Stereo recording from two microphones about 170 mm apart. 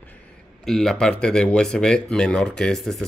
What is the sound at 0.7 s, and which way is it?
Speech, centre (ahead or behind).